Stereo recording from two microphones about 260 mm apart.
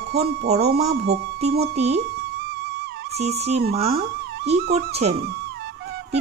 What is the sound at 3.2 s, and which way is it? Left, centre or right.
Speech, right.